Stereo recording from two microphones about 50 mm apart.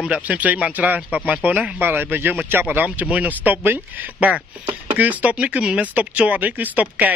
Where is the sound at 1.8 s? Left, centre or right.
Right.